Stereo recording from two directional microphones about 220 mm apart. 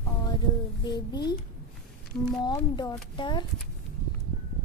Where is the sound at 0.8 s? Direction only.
20° left (ahead or behind).